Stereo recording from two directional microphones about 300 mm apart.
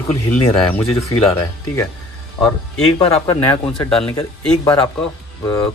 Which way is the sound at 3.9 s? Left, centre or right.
Centre.